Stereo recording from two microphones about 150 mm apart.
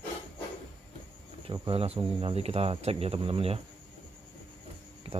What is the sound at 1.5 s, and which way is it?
Speech, 35° right (ahead or behind).